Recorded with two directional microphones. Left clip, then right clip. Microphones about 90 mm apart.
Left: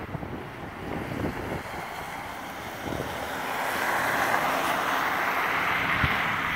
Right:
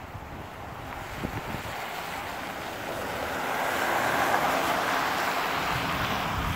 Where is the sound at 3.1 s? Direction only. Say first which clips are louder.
Right 4 dB; 45° left (ahead or behind).